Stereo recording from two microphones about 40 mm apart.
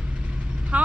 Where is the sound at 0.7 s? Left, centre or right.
Right.